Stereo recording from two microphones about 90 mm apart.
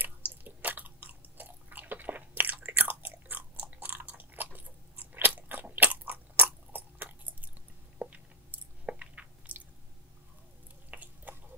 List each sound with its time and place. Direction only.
0.0 s chewing: 20° right (ahead or behind)
8.8 s crunch: 15° right (ahead or behind)
10.9 s a sound: 20° right (ahead or behind)